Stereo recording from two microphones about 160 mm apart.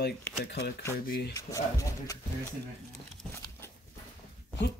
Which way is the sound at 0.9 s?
70° left (ahead or behind).